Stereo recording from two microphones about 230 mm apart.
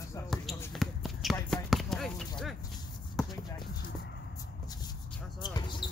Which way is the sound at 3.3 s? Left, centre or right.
Centre.